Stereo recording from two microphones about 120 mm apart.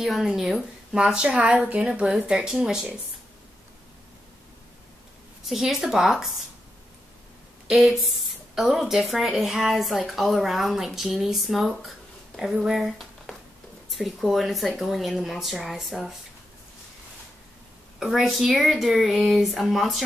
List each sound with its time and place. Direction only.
0.0 s a woman's voice: centre (ahead or behind)
5.5 s speech: 5° right (ahead or behind)
7.6 s speech: 5° right (ahead or behind)
17.9 s speech: centre (ahead or behind)